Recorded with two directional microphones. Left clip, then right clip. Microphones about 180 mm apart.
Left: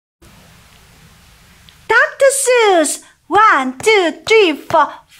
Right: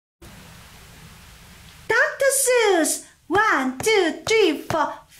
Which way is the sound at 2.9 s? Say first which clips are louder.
Left 7 dB; centre (ahead or behind).